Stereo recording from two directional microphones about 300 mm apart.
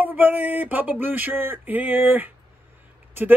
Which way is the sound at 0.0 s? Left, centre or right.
Centre.